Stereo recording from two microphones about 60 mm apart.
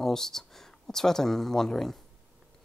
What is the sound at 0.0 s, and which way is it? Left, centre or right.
Speech, centre.